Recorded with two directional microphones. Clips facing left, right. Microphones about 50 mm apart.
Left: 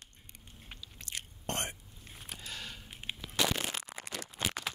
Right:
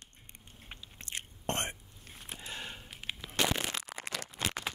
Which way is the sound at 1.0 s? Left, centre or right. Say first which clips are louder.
Right 2 dB; right.